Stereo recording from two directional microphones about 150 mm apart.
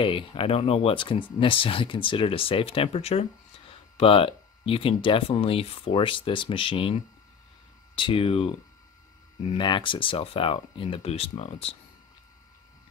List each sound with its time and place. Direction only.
0.0 s speech: 35° left (ahead or behind)